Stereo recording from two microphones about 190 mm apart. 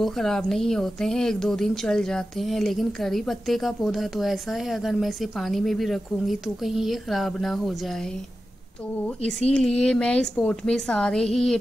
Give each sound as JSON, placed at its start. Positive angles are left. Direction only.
{"t": 0.0, "sound": "a woman's voice", "side_deg": 0}